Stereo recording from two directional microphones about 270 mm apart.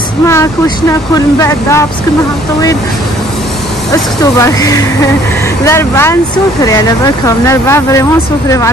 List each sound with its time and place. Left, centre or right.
0.3 s speech: centre
3.9 s speech: centre
7.2 s speech: centre